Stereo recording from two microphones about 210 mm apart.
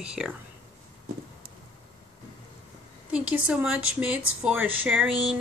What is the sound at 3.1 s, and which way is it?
Speech, 5° right (ahead or behind).